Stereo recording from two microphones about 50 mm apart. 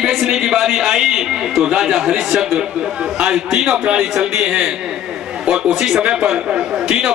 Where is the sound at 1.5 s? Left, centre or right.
Centre.